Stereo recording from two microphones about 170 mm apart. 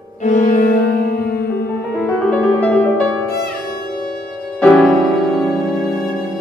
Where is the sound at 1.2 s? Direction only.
65° left (ahead or behind).